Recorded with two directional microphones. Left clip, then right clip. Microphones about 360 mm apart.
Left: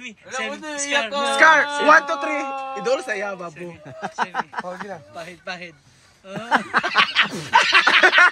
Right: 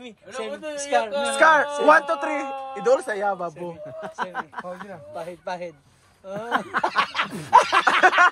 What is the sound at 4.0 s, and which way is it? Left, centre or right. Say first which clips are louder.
Speech: left 6 dB; left.